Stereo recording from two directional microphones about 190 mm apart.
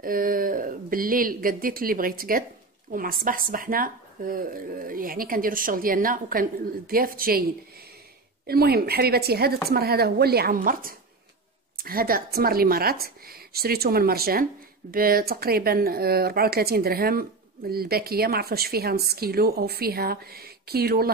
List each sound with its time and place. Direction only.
0.0 s speech: 50° right (ahead or behind)
8.5 s speech: 55° right (ahead or behind)